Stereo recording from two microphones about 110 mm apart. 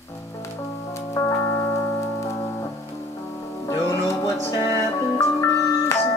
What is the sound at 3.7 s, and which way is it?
Music, 30° left (ahead or behind).